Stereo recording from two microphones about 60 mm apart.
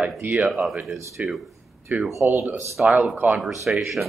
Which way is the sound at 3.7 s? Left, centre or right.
Centre.